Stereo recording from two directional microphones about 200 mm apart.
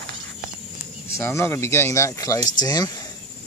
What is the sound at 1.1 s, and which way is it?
Speech, 15° left (ahead or behind).